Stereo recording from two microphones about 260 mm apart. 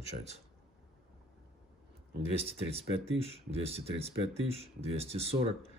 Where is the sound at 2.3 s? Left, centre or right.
Right.